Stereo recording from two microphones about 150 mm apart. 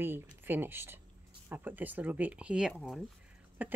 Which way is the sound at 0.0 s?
15° right (ahead or behind).